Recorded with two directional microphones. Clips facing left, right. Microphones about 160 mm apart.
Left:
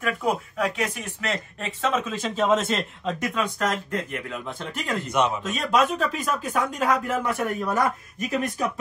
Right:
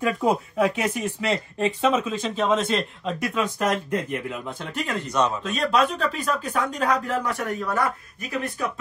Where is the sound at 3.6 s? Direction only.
15° right (ahead or behind).